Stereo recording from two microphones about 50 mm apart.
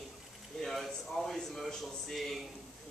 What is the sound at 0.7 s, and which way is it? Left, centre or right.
A man's voice, centre.